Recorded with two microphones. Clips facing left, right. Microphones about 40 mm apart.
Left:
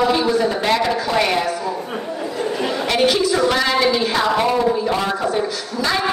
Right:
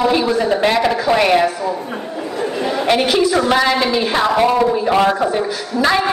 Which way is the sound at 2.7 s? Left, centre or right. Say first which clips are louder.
Right 2 dB; centre.